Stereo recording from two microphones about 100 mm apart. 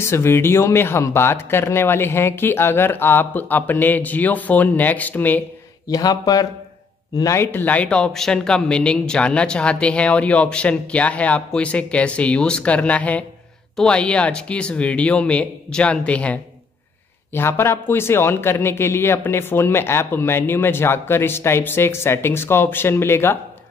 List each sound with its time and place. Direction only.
0.0 s speech: 25° left (ahead or behind)
5.9 s speech: 40° left (ahead or behind)
7.5 s speech: 15° left (ahead or behind)
17.3 s speech: 25° left (ahead or behind)